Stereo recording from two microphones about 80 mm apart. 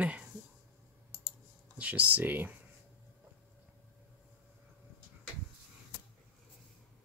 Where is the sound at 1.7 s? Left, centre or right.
Centre.